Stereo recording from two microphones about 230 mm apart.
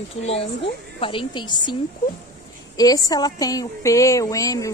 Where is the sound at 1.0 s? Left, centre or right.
Left.